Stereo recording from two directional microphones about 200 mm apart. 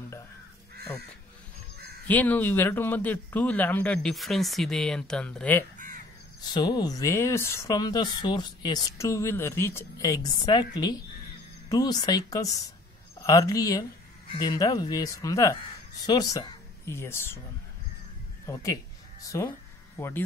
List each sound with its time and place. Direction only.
2.0 s speech: 10° left (ahead or behind)
6.4 s a woman's voice: 20° left (ahead or behind)
18.5 s speech: 15° left (ahead or behind)
20.0 s speech: 10° left (ahead or behind)